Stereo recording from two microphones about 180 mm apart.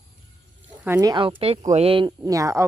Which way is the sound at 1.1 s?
30° right (ahead or behind).